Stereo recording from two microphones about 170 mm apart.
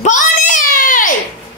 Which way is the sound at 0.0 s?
45° left (ahead or behind).